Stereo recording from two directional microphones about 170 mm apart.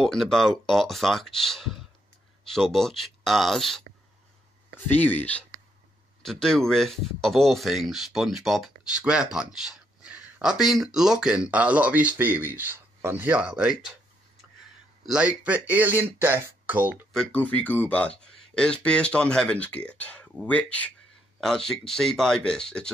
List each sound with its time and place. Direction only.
0.0 s speech: centre (ahead or behind)
15.0 s speech: 5° right (ahead or behind)
17.1 s speech: 5° left (ahead or behind)